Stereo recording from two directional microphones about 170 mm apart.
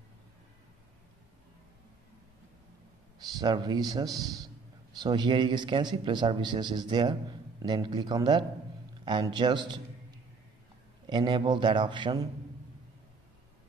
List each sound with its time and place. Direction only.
3.3 s a man's voice: 25° right (ahead or behind)